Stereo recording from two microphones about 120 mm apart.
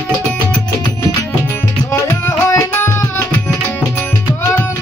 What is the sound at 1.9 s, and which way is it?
Music, 25° left (ahead or behind).